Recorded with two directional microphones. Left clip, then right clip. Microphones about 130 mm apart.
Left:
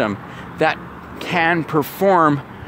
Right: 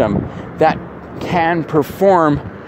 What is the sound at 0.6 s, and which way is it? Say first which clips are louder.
Speech: right 4 dB; 35° left (ahead or behind).